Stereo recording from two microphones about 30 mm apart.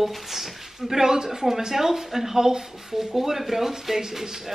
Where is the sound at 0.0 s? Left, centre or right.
Centre.